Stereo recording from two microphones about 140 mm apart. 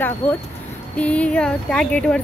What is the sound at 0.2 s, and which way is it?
Speech, 15° left (ahead or behind).